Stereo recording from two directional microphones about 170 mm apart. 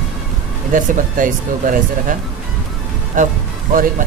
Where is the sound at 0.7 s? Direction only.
50° right (ahead or behind).